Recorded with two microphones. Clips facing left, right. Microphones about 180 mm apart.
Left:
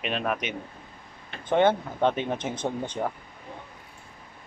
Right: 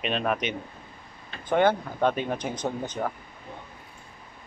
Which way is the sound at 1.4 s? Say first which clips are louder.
Left 1 dB; 20° left (ahead or behind).